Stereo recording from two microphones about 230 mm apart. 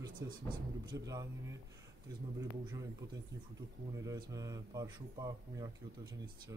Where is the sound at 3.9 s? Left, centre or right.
Centre.